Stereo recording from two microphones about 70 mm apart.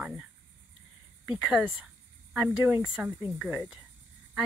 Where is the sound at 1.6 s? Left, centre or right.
Centre.